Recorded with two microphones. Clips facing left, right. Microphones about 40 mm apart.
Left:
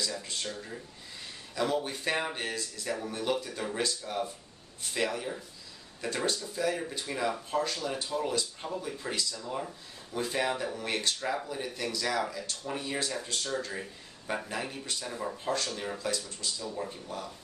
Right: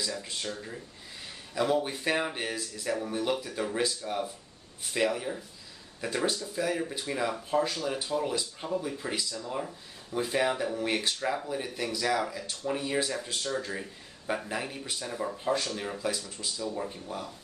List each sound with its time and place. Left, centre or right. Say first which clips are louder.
0.0 s speech: right 1 dB; centre